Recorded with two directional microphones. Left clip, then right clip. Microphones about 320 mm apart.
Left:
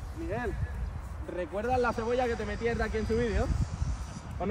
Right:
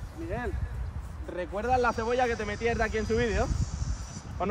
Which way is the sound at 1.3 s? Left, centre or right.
Centre.